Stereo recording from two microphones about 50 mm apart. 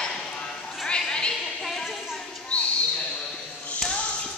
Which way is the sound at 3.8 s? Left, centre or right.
Centre.